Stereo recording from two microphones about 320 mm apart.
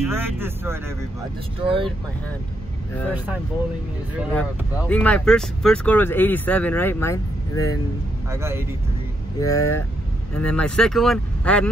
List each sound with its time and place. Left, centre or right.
0.1 s speech: centre
4.2 s speech: centre
8.3 s speech: centre
9.4 s speech: centre